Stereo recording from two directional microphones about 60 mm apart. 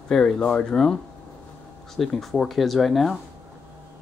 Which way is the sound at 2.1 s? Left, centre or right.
Centre.